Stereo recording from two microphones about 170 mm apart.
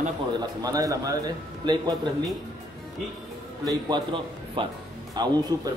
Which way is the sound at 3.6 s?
25° right (ahead or behind).